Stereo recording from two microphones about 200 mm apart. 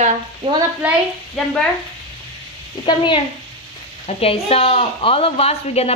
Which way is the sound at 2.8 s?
25° left (ahead or behind).